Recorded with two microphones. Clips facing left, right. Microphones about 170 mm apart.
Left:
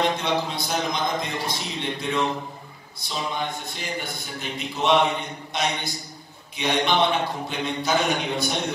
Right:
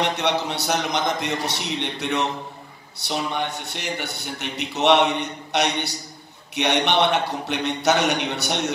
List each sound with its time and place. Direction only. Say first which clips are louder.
0.2 s a man's voice: right 2 dB; 75° right (ahead or behind)